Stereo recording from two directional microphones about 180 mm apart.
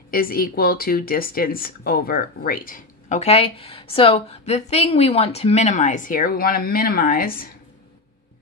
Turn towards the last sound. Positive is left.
turn(degrees=55)  # may be behind; listen again after turning